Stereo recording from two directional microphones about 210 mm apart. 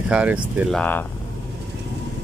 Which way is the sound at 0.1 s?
5° right (ahead or behind).